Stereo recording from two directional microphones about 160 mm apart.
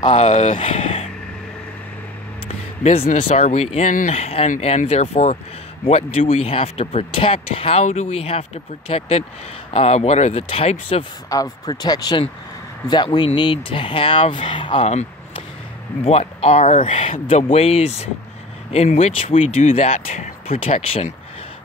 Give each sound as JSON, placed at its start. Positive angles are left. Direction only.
{"t": 0.1, "sound": "speech", "side_deg": 45}
{"t": 2.4, "sound": "speech", "side_deg": 40}
{"t": 11.2, "sound": "speech", "side_deg": 25}